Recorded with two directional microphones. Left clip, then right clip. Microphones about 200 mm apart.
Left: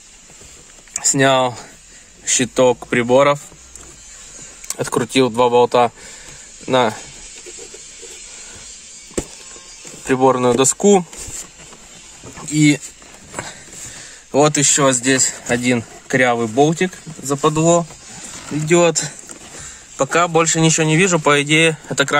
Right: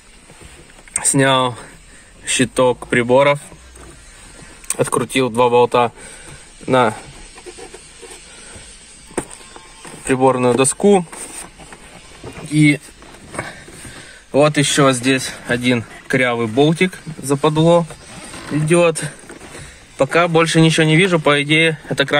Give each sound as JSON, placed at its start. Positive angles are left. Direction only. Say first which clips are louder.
{"t": 0.9, "sound": "speech", "louder": "even", "side_deg": 5}
{"t": 4.6, "sound": "speech", "louder": "right 2 dB", "side_deg": 0}
{"t": 10.0, "sound": "speech", "louder": "even", "side_deg": 10}
{"t": 12.4, "sound": "speech", "louder": "right 1 dB", "side_deg": 20}
{"t": 14.3, "sound": "speech", "louder": "right 1 dB", "side_deg": 20}
{"t": 17.6, "sound": "speech", "louder": "right 2 dB", "side_deg": 20}